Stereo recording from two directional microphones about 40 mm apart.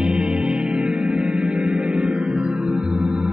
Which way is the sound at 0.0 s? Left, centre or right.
Right.